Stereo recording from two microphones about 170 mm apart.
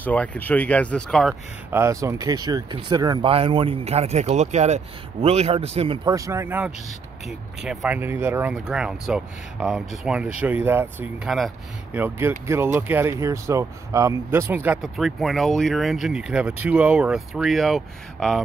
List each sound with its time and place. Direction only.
0.0 s speech: 10° left (ahead or behind)
1.7 s speech: 15° right (ahead or behind); by 5.9 s 35° right (ahead or behind)
6.0 s speech: 20° right (ahead or behind)
7.2 s speech: centre (ahead or behind)
11.2 s speech: centre (ahead or behind)
11.9 s speech: 10° right (ahead or behind)